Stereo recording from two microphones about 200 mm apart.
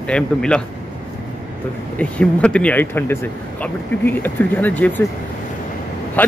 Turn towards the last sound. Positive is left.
turn(degrees=10)  # may be behind; listen again after turning